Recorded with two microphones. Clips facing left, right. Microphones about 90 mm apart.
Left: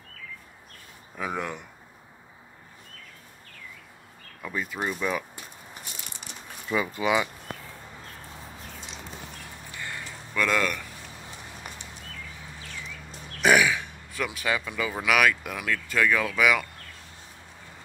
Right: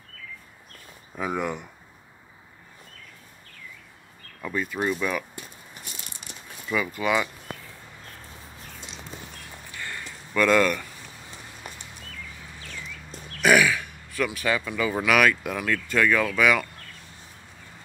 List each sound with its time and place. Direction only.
1.1 s speech: 10° right (ahead or behind)
4.4 s speech: 5° left (ahead or behind)
6.7 s speech: 25° left (ahead or behind)
10.3 s speech: centre (ahead or behind)
13.4 s grunt: 20° left (ahead or behind)
15.0 s speech: 5° left (ahead or behind)